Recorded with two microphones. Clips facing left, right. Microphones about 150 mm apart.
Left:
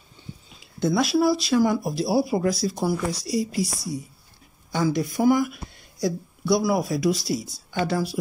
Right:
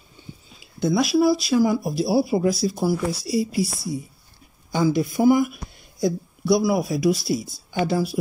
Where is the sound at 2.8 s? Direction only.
5° right (ahead or behind).